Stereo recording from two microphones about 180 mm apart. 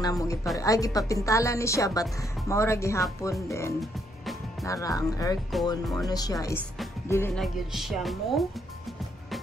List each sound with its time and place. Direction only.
0.0 s speech: 20° left (ahead or behind)
7.3 s a woman's voice: centre (ahead or behind)